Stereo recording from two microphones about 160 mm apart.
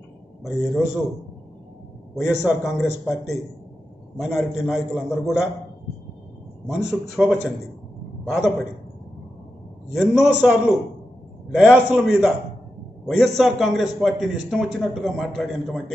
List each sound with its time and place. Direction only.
0.4 s speech: centre (ahead or behind)
2.1 s speech: 5° right (ahead or behind)
4.2 s speech: centre (ahead or behind)
6.7 s speech: centre (ahead or behind)
9.9 s speech: centre (ahead or behind)
13.4 s speech: centre (ahead or behind)